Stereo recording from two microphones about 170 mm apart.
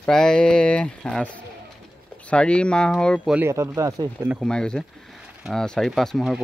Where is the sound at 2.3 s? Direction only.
5° left (ahead or behind).